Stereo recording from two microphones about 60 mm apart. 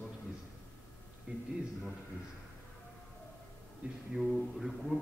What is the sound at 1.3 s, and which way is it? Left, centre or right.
Speech, right.